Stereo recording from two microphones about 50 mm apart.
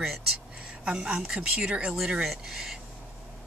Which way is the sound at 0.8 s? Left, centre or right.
Centre.